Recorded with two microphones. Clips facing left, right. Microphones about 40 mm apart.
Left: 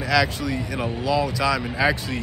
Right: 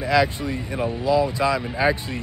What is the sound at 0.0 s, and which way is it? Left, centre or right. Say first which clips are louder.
Speech: right 1 dB; right.